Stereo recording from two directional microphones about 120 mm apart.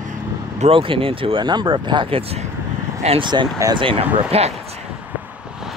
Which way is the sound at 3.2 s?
40° right (ahead or behind).